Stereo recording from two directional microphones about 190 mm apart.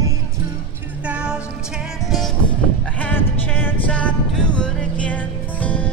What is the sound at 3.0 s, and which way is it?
Music, 10° left (ahead or behind).